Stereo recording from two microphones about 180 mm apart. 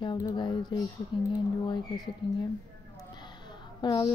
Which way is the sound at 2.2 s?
25° left (ahead or behind).